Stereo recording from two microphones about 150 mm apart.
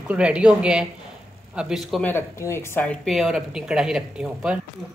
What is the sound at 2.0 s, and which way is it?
Speech, 15° left (ahead or behind).